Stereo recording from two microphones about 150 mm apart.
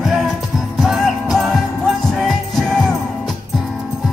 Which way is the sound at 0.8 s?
Centre (ahead or behind).